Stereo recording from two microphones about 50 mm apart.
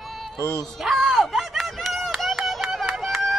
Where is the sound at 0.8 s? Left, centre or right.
Centre.